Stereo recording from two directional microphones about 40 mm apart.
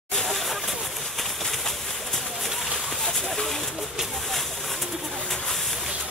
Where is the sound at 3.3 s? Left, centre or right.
Centre.